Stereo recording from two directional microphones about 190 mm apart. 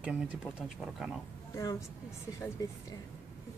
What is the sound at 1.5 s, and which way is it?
A woman's voice, 20° left (ahead or behind).